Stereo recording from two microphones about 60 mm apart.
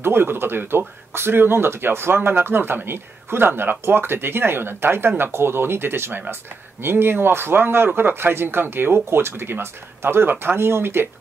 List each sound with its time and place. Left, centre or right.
0.0 s speech: right